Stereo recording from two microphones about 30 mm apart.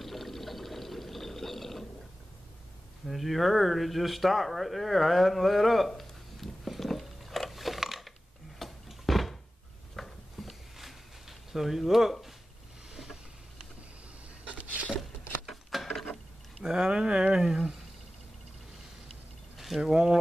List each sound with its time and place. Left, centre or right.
0.0 s water: centre
3.1 s speech: centre
5.9 s a sound: centre
10.8 s zipper: centre
12.9 s vehicle: centre
15.0 s a sound: centre
16.6 s speech: right
17.3 s speech: centre
19.5 s a sound: centre
19.8 s speech: right